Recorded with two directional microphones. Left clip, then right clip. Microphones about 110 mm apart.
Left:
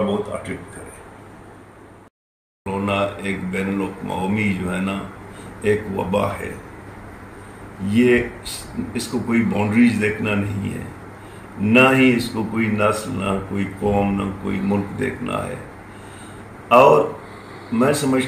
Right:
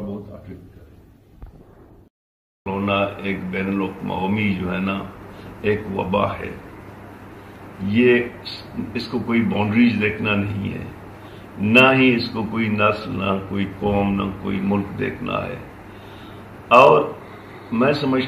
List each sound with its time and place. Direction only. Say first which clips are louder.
2.6 s speech: even; 20° left (ahead or behind)
7.9 s speech: even; 20° left (ahead or behind)
16.6 s speech: even; 20° left (ahead or behind)